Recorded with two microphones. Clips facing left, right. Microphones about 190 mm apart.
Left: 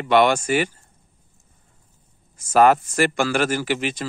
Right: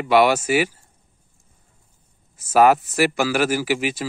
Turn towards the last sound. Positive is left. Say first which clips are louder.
# right 2 dB
turn(degrees=-5)  # may be behind; listen again after turning